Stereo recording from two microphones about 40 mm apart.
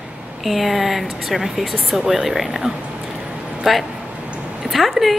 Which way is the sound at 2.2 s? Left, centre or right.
Centre.